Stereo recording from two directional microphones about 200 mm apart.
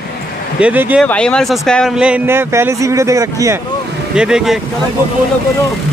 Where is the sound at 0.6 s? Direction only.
10° right (ahead or behind).